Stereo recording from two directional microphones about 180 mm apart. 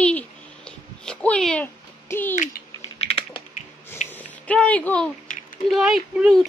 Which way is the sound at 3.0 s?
30° left (ahead or behind).